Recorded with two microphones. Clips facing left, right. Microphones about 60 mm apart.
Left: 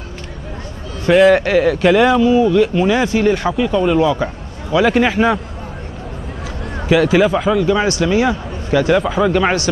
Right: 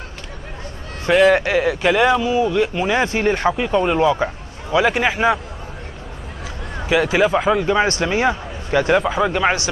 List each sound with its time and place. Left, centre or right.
1.3 s speech: centre
2.9 s speech: right; by 5.4 s centre
7.1 s speech: centre
7.5 s speech: right
9.0 s speech: centre